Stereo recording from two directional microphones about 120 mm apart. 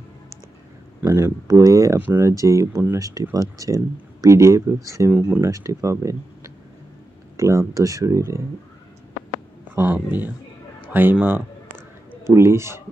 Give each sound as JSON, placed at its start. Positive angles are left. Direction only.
{"t": 1.0, "sound": "speech", "side_deg": -20}
{"t": 2.0, "sound": "speech", "side_deg": -15}
{"t": 5.1, "sound": "speech", "side_deg": -15}
{"t": 5.5, "sound": "speech", "side_deg": -25}
{"t": 9.8, "sound": "speech", "side_deg": -15}